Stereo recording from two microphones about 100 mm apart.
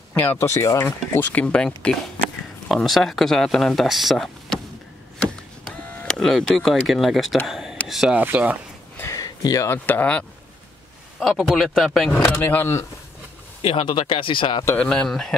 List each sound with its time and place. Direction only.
0.1 s speech: 20° left (ahead or behind)
2.7 s speech: centre (ahead or behind)
5.7 s speech: 5° left (ahead or behind)
8.2 s speech: 15° right (ahead or behind)
9.1 s a sound: 35° left (ahead or behind)
9.8 s speech: 15° left (ahead or behind)
11.1 s speech: centre (ahead or behind)
12.4 s speech: 20° left (ahead or behind)
13.6 s speech: 60° left (ahead or behind)
14.8 s speech: 10° left (ahead or behind)